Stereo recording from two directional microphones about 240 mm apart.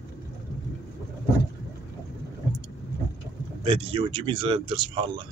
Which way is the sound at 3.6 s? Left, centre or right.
Right.